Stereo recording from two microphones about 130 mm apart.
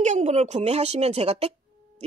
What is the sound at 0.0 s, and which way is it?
Speech, 60° right (ahead or behind).